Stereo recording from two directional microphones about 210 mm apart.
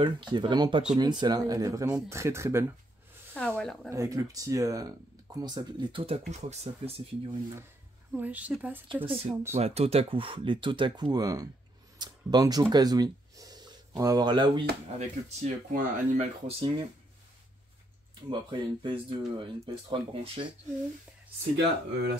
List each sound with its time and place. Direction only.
0.0 s speech: 20° right (ahead or behind)
3.3 s speech: 5° left (ahead or behind)
3.9 s speech: 15° right (ahead or behind)
8.1 s speech: 10° right (ahead or behind)
8.8 s speech: 25° right (ahead or behind)
15.0 s speech: 35° right (ahead or behind)
18.3 s speech: 20° right (ahead or behind)